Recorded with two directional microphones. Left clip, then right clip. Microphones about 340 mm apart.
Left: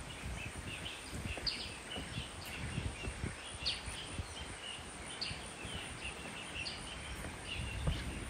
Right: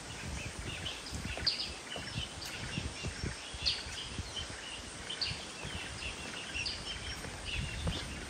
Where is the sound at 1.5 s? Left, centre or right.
Left.